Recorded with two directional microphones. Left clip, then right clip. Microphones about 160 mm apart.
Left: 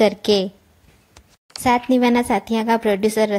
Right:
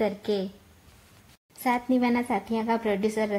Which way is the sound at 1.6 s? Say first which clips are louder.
Left 9 dB; 30° left (ahead or behind).